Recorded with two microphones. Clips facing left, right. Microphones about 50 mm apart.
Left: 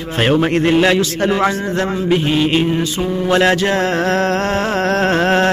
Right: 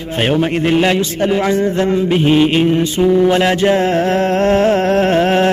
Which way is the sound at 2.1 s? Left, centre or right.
Centre.